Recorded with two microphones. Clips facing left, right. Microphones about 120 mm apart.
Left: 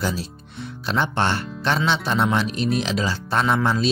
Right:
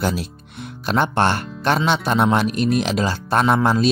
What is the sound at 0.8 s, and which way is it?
Speech, 50° right (ahead or behind).